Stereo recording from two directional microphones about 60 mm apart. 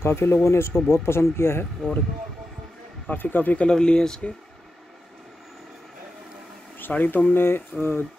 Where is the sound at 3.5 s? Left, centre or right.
Centre.